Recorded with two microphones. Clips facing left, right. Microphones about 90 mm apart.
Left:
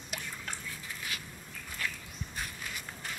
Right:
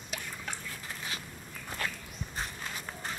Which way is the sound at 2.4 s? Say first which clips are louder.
Right 3 dB; 35° right (ahead or behind).